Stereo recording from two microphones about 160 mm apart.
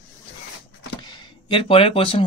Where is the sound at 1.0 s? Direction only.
30° left (ahead or behind).